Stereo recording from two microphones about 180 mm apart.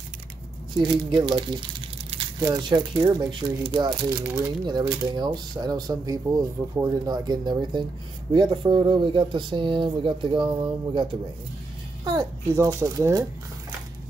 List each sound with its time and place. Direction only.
0.7 s speech: 25° right (ahead or behind)
2.4 s speech: 25° right (ahead or behind)